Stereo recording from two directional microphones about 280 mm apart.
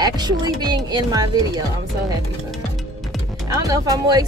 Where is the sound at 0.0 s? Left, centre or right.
Centre.